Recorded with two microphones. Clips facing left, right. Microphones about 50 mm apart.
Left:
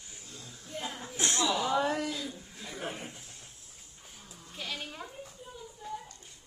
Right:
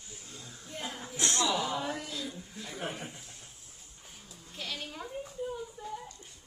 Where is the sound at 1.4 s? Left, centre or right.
Centre.